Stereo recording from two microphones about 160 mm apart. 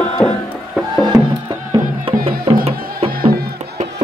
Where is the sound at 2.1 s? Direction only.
35° right (ahead or behind).